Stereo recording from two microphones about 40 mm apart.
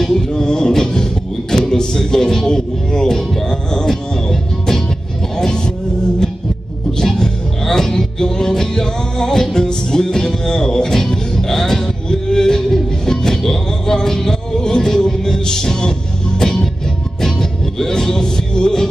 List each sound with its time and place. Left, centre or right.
0.0 s music: centre
1.5 s speech: centre
3.4 s music: centre
7.0 s music: centre
17.2 s music: centre